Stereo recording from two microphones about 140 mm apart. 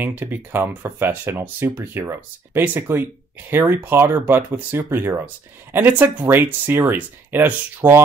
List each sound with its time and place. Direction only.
0.0 s speech: 15° right (ahead or behind)